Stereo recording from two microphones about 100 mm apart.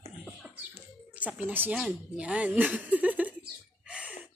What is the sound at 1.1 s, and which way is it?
Speech, 15° right (ahead or behind).